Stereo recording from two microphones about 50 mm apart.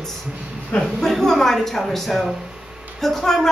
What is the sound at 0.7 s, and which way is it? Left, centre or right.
Speech, left.